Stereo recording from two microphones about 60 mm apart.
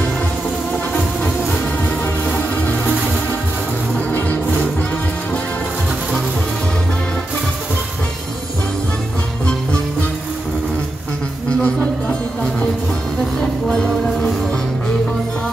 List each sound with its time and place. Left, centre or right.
2.2 s music: left
11.6 s music: centre